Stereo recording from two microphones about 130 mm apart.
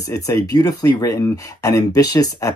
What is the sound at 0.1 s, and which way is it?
Speech, 25° left (ahead or behind).